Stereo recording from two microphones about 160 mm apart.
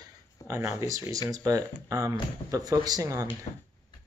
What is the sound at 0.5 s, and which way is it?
Speech, 15° right (ahead or behind).